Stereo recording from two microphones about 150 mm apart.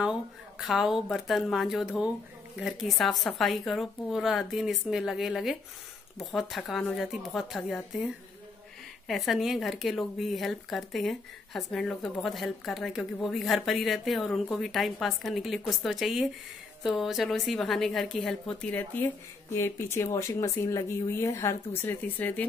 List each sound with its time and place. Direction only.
0.6 s speech: 5° right (ahead or behind)